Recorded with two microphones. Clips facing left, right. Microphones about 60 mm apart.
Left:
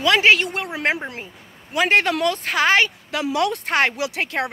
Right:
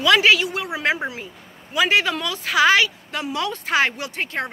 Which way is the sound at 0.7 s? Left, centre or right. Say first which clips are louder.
Even; left.